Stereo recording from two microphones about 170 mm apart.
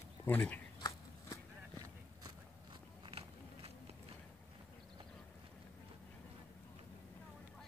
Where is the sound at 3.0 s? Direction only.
35° right (ahead or behind).